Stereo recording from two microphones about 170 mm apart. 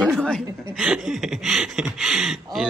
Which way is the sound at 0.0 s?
Centre (ahead or behind).